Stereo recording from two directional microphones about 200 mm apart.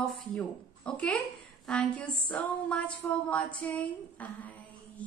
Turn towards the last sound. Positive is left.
turn(degrees=5)  # may be behind; listen again after turning